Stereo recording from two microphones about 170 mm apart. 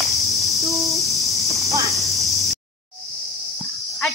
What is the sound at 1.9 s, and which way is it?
Snake, centre (ahead or behind).